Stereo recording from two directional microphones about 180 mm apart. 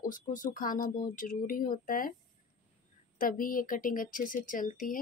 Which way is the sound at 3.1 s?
50° left (ahead or behind).